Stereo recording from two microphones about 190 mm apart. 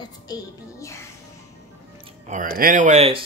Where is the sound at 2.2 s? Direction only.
40° right (ahead or behind).